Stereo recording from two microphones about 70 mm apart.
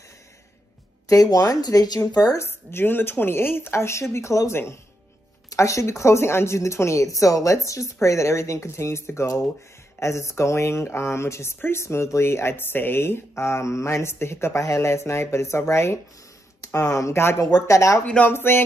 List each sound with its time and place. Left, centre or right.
1.0 s speech: left
2.3 s speech: left
17.6 s speech: left
18.0 s speech: centre
18.3 s speech: left